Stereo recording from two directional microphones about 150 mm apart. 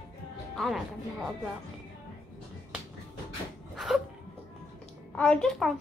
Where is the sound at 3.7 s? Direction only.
Centre (ahead or behind).